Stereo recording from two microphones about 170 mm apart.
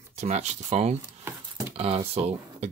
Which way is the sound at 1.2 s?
10° right (ahead or behind).